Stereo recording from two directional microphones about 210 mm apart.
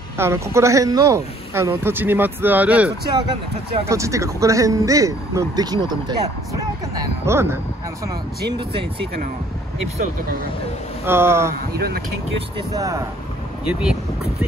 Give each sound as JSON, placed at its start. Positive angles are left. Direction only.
{"t": 0.2, "sound": "a man's voice", "side_deg": -15}
{"t": 11.1, "sound": "a man's voice", "side_deg": -10}
{"t": 11.7, "sound": "speech", "side_deg": -50}
{"t": 12.4, "sound": "a man's voice", "side_deg": -20}
{"t": 13.7, "sound": "speech", "side_deg": -5}